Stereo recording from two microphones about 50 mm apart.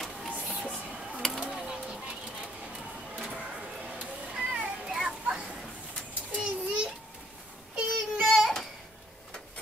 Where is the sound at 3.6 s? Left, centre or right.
Centre.